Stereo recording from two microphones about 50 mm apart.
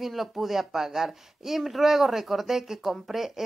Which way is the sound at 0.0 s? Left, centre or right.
Centre.